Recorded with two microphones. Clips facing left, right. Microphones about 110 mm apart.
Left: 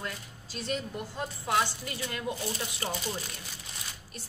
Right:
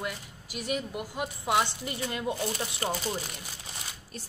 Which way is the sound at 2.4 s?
40° right (ahead or behind).